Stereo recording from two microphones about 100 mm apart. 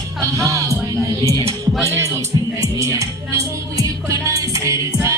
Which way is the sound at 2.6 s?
30° right (ahead or behind).